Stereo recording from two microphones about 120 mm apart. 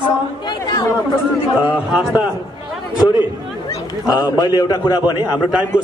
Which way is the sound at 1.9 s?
5° right (ahead or behind).